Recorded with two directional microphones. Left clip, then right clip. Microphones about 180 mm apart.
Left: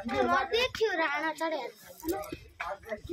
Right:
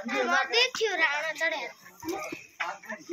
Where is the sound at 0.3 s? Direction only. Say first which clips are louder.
Right 6 dB; 60° left (ahead or behind).